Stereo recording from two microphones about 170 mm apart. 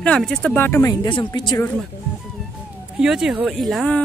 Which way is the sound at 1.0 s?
25° left (ahead or behind).